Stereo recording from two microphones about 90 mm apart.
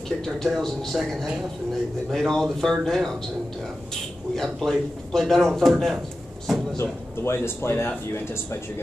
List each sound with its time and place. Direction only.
0.2 s a man's voice: 5° left (ahead or behind)
4.4 s a man's voice: 5° left (ahead or behind)
6.8 s speech: 30° left (ahead or behind)